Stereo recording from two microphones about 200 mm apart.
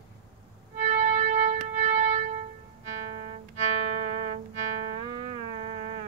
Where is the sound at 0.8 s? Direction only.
35° right (ahead or behind).